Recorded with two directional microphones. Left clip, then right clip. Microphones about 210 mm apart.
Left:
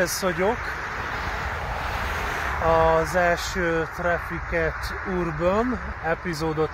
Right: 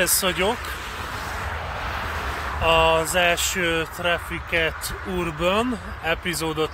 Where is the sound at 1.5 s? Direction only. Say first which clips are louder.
Even; 55° left (ahead or behind).